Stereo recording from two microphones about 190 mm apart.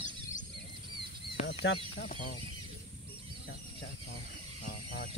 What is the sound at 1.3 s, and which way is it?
Fowl, 65° left (ahead or behind).